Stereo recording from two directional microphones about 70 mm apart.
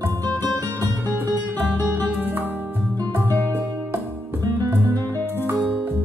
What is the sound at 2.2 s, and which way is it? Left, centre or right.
Music, right.